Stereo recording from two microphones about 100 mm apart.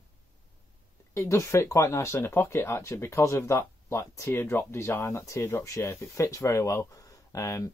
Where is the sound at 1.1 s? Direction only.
30° left (ahead or behind).